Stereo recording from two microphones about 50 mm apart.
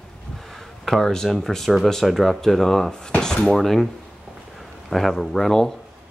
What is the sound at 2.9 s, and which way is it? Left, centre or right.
Speech, centre.